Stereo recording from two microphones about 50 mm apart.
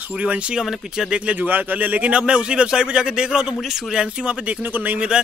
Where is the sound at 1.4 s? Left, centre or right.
Right.